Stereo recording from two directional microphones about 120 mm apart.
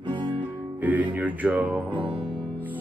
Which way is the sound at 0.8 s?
15° right (ahead or behind).